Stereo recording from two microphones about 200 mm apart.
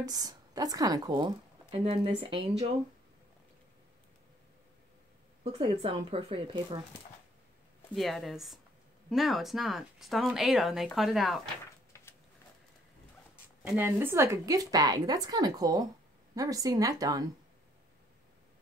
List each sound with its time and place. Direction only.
0.0 s a woman's voice: 20° right (ahead or behind)
5.4 s a woman's voice: 25° right (ahead or behind)
7.9 s speech: centre (ahead or behind)
11.9 s a sound: 15° left (ahead or behind)
13.7 s a woman's voice: 10° right (ahead or behind)